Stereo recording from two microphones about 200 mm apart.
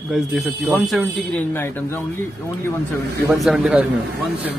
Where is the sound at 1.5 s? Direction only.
10° left (ahead or behind).